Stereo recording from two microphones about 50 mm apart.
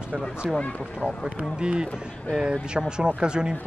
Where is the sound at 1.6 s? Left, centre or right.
Centre.